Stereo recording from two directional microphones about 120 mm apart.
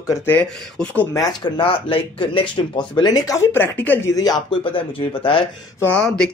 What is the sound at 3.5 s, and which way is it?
Speech, 15° left (ahead or behind).